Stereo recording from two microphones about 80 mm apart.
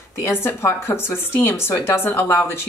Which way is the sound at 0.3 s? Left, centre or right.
Left.